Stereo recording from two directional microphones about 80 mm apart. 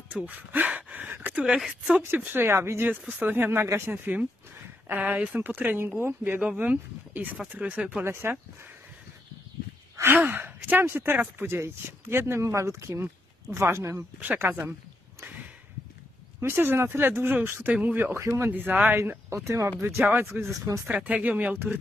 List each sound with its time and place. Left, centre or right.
0.1 s gasp: centre
1.1 s a sound: right
1.4 s speech: centre; by 3.6 s right
3.6 s speech: right
3.9 s speech: right
8.0 s speech: right
10.1 s speech: right
16.3 s speech: right